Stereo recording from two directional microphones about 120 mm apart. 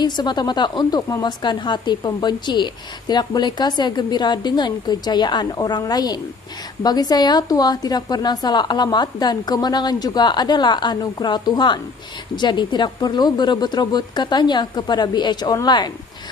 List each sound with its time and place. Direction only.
0.0 s a woman's voice: 35° left (ahead or behind)